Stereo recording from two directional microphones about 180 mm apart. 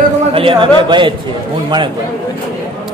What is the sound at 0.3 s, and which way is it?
Speech, 30° right (ahead or behind).